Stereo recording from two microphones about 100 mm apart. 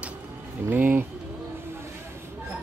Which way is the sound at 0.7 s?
20° right (ahead or behind).